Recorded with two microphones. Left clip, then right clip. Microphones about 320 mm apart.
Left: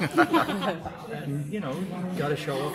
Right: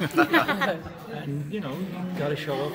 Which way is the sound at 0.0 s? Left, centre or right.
Centre.